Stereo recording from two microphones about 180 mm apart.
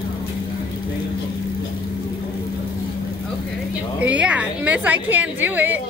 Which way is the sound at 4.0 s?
10° right (ahead or behind).